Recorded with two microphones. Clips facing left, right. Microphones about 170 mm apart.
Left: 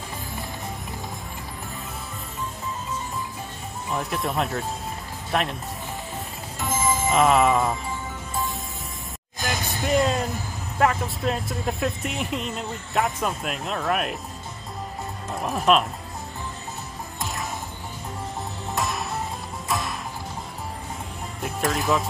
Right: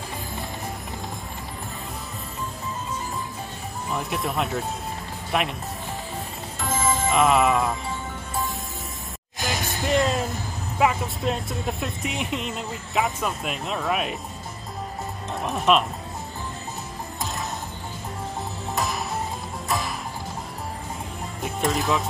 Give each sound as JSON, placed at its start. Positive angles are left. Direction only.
{"t": 3.9, "sound": "speech", "side_deg": 0}
{"t": 6.9, "sound": "music", "side_deg": 0}
{"t": 9.4, "sound": "music", "side_deg": 0}
{"t": 10.8, "sound": "speech", "side_deg": 0}
{"t": 15.3, "sound": "speech", "side_deg": 0}
{"t": 18.8, "sound": "music", "side_deg": 0}
{"t": 21.4, "sound": "speech", "side_deg": 0}